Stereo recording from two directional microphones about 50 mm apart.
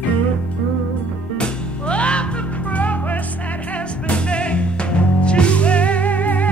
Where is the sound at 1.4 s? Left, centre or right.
Left.